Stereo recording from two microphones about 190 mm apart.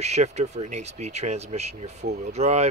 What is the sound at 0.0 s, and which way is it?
Speech, 35° right (ahead or behind).